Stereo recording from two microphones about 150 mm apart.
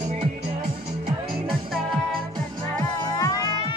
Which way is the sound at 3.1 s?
25° left (ahead or behind).